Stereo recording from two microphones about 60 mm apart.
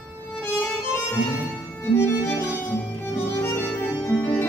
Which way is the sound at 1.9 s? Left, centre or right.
Left.